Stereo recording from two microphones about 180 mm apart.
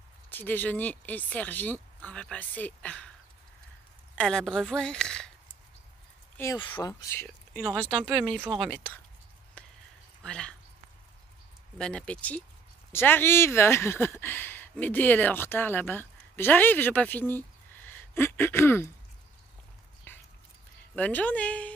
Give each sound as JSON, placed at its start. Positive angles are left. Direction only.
{"t": 0.3, "sound": "speech", "side_deg": 10}
{"t": 4.1, "sound": "a woman's voice", "side_deg": 5}
{"t": 6.3, "sound": "speech", "side_deg": 15}
{"t": 9.6, "sound": "a sound", "side_deg": 5}
{"t": 10.2, "sound": "speech", "side_deg": 5}
{"t": 11.8, "sound": "speech", "side_deg": 5}
{"t": 20.1, "sound": "dog", "side_deg": 10}
{"t": 20.9, "sound": "speech", "side_deg": 10}